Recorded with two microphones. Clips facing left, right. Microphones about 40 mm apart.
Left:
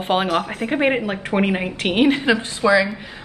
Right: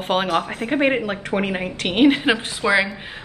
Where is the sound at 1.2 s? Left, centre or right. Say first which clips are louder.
Left 6 dB; left.